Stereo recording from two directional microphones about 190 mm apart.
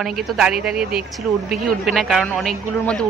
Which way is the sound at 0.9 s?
50° right (ahead or behind).